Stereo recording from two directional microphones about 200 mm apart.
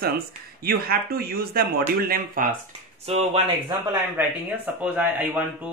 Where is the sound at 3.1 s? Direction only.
30° right (ahead or behind).